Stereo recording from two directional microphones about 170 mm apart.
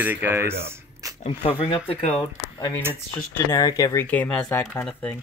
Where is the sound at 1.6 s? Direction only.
35° left (ahead or behind).